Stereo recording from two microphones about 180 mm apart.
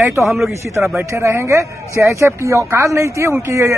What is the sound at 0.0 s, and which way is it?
Speech, 10° right (ahead or behind).